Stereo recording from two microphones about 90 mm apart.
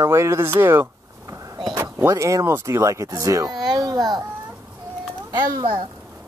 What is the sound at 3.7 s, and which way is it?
Baby cry, 50° right (ahead or behind).